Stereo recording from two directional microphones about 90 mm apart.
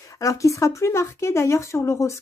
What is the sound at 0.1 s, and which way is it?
Speech, 35° left (ahead or behind).